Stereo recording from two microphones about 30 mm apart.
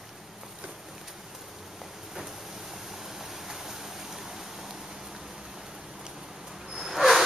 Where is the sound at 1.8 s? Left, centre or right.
Centre.